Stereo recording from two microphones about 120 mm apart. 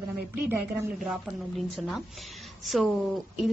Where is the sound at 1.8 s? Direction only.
Centre (ahead or behind).